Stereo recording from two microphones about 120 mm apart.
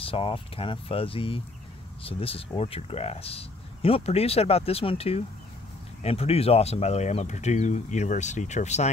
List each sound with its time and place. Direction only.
0.0 s speech: 50° left (ahead or behind); by 8.9 s 75° left (ahead or behind)